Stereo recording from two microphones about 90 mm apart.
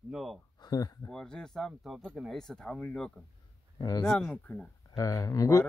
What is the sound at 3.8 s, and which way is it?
Speech, 50° left (ahead or behind).